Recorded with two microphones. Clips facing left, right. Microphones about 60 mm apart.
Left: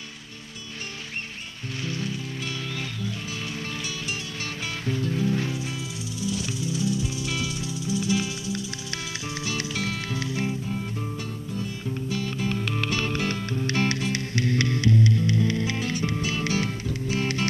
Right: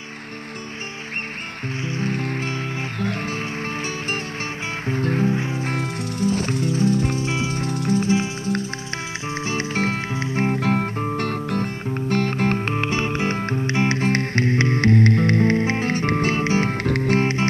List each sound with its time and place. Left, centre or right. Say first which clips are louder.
2.0 s music: right 8 dB; right
4.8 s music: right 5 dB; right
5.3 s music: right 3 dB; right
5.6 s music: right 8 dB; right
7.2 s music: right 6 dB; right
10.5 s music: right 9 dB; right
13.4 s music: right 5 dB; right
13.7 s music: right 3 dB; right
14.0 s music: right 6 dB; right
14.8 s music: right 6 dB; right
16.4 s music: right 6 dB; right
16.7 s music: right 9 dB; right
17.2 s music: right 6 dB; right